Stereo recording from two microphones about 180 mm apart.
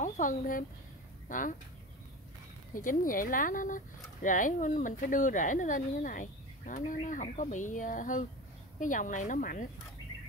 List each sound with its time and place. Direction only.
0.0 s speech: 45° left (ahead or behind)
2.7 s speech: 50° left (ahead or behind)